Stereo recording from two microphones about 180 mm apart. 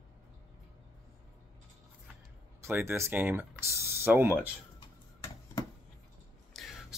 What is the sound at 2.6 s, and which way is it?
Speech, 15° right (ahead or behind).